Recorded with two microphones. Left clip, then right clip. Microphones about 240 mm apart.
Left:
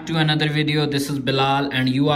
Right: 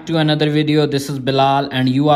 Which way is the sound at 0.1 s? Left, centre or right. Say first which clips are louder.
Right 5 dB; centre.